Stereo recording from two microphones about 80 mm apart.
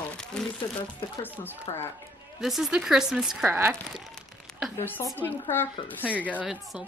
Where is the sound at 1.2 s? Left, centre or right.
Left.